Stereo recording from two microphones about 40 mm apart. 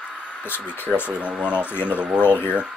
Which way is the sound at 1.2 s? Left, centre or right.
Right.